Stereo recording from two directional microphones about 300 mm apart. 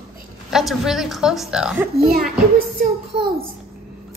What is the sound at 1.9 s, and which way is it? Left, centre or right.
Music, right.